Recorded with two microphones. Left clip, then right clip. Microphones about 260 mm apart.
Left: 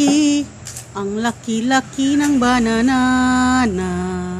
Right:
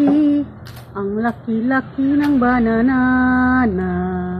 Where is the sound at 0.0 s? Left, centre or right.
Left.